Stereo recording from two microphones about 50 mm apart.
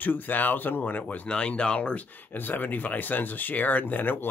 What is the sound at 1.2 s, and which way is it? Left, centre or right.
Speech, left.